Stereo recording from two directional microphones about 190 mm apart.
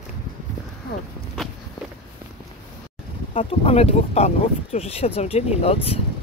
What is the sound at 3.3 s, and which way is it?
Speech, 30° left (ahead or behind).